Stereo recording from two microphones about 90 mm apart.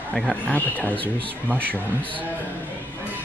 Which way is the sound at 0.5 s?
20° left (ahead or behind).